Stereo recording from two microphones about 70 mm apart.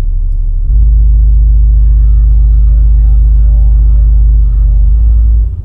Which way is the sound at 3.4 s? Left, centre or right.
Left.